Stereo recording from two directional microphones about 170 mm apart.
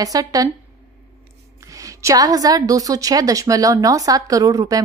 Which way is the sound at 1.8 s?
20° right (ahead or behind).